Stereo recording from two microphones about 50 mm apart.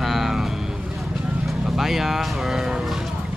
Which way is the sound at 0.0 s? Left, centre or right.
Centre.